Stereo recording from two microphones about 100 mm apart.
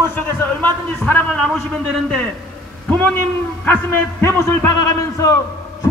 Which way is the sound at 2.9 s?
15° left (ahead or behind).